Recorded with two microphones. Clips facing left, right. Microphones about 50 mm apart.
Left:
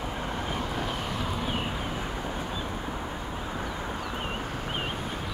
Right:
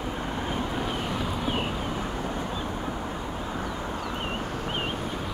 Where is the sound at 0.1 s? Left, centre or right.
Right.